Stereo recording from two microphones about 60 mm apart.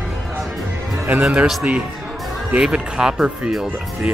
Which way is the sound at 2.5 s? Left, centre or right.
Centre.